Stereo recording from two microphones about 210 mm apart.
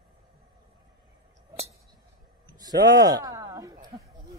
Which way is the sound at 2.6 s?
20° right (ahead or behind).